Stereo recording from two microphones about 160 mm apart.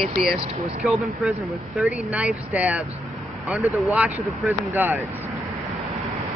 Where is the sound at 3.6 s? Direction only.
20° left (ahead or behind).